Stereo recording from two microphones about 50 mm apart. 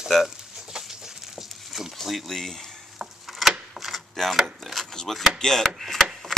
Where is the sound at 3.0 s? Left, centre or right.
Centre.